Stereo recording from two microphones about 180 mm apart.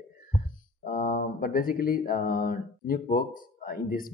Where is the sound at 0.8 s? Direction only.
55° left (ahead or behind).